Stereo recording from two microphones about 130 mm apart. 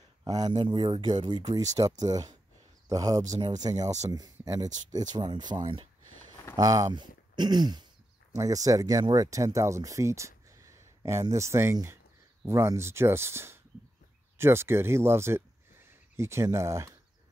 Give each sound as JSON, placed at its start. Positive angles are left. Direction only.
{"t": 0.2, "sound": "speech", "side_deg": -30}